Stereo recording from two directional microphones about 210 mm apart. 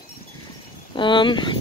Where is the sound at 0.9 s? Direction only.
20° left (ahead or behind).